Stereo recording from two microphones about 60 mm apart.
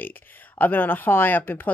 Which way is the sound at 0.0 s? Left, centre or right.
Left.